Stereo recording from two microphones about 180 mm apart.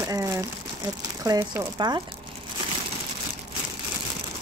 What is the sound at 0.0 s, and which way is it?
Crumpling, 20° right (ahead or behind).